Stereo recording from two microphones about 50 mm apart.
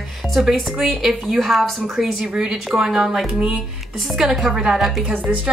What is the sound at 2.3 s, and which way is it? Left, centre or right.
Speech, centre.